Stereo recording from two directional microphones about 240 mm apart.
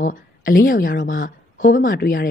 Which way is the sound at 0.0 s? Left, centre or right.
Left.